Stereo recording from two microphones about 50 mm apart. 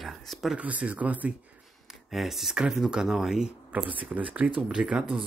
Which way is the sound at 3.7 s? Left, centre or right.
Right.